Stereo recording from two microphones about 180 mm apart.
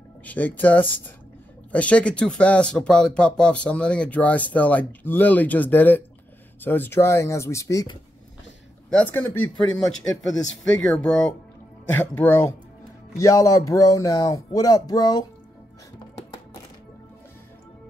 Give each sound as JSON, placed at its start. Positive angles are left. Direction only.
{"t": 0.2, "sound": "speech", "side_deg": 10}
{"t": 8.9, "sound": "speech", "side_deg": 10}